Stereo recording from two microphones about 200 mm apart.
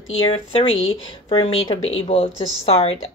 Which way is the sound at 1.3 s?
25° left (ahead or behind).